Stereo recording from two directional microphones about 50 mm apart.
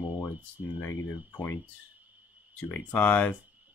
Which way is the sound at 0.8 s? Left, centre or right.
Left.